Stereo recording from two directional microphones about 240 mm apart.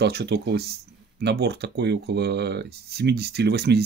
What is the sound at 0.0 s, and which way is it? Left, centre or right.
Speech, right.